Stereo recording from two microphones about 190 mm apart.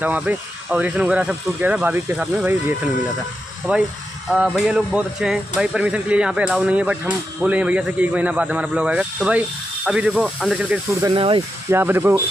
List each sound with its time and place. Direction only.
0.0 s speech: 10° right (ahead or behind)
3.7 s speech: 10° right (ahead or behind)
11.1 s speech: 30° right (ahead or behind)
11.7 s speech: 10° right (ahead or behind)